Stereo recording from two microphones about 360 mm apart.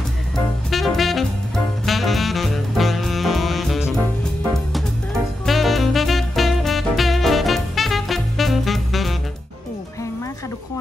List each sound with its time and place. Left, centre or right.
0.7 s saxophone: centre
5.4 s music: centre